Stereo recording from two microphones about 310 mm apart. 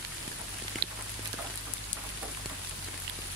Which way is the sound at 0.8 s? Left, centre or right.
Right.